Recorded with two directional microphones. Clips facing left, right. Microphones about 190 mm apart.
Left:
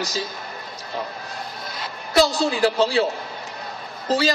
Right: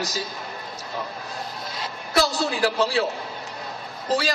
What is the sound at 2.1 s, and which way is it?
Speech, centre (ahead or behind).